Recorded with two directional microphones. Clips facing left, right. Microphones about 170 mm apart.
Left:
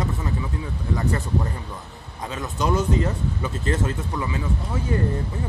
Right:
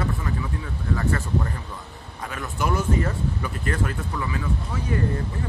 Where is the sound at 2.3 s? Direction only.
20° left (ahead or behind).